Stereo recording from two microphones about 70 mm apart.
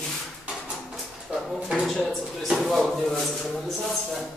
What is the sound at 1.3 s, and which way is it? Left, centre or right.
Speech, centre.